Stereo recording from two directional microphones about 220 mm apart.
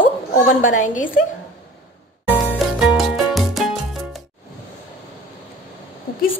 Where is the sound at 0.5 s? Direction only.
40° left (ahead or behind).